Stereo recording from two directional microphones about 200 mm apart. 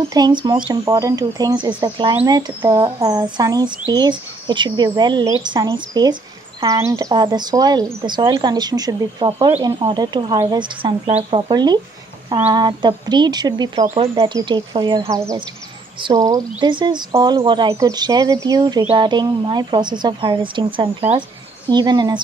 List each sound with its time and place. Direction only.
0.1 s speech: 20° right (ahead or behind)